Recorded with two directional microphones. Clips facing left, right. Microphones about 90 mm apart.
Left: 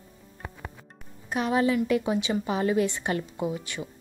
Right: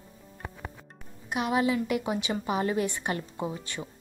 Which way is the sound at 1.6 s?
25° right (ahead or behind).